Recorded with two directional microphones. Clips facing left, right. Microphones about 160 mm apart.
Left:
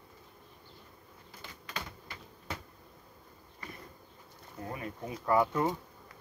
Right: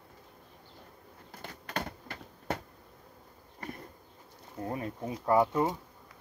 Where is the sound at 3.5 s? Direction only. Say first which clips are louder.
Right 5 dB; 50° right (ahead or behind).